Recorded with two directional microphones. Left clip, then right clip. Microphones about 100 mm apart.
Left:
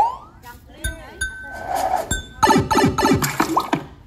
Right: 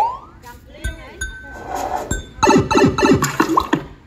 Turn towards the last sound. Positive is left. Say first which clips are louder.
# right 3 dB
turn(degrees=-25)  # may be behind; listen again after turning